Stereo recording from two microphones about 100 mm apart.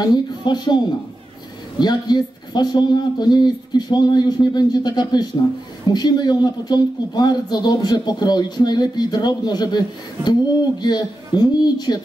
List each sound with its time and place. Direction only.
0.0 s speech: 45° left (ahead or behind)